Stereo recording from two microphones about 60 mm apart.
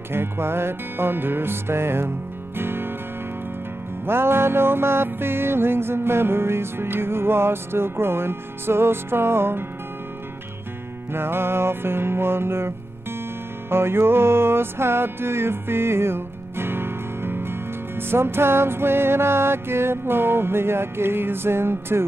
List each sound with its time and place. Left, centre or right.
0.1 s music: right
4.0 s music: right
11.1 s music: right